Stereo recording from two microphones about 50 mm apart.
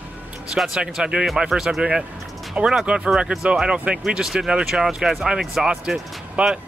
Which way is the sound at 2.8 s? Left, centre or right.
Centre.